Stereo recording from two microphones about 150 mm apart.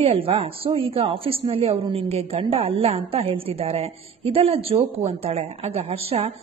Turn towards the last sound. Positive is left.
turn(degrees=-40)  # may be behind; listen again after turning